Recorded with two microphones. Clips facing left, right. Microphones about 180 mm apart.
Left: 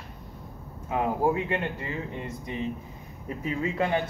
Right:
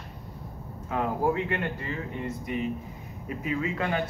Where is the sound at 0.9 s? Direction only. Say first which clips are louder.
Left 1 dB; 20° left (ahead or behind).